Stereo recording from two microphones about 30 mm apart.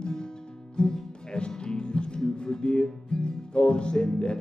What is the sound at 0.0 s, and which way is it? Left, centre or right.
Music, left.